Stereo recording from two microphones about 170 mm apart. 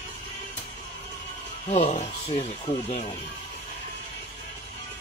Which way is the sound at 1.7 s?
40° left (ahead or behind).